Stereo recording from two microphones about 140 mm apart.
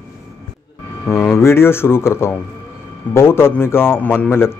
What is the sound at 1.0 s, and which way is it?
A man's voice, 20° left (ahead or behind).